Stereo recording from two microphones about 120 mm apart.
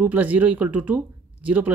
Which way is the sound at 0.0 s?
15° right (ahead or behind).